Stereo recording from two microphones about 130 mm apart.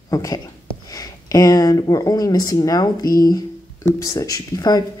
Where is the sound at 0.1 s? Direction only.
25° left (ahead or behind).